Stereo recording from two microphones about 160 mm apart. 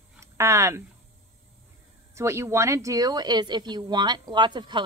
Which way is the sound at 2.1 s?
15° right (ahead or behind).